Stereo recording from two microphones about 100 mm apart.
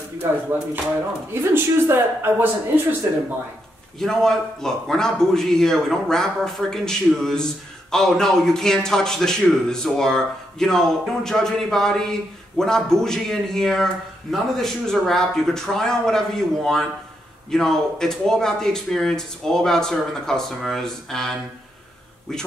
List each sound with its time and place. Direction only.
1.3 s speech: 25° right (ahead or behind)
4.0 s a man's voice: 5° left (ahead or behind)